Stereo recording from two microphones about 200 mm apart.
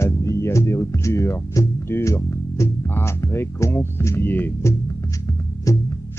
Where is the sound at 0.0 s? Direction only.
15° left (ahead or behind).